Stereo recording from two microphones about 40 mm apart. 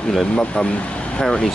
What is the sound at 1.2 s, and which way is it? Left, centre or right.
Speech, centre.